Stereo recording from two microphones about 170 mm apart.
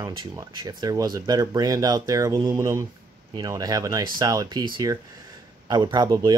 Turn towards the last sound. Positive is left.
turn(degrees=-25)  # may be behind; listen again after turning